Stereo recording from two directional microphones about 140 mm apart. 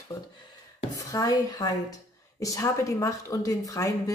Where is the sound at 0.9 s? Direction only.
25° left (ahead or behind).